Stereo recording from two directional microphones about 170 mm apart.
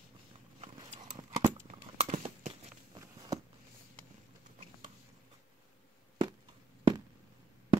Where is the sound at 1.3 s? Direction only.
15° right (ahead or behind).